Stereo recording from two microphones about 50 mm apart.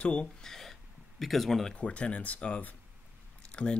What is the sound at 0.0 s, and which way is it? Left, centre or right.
Speech, left.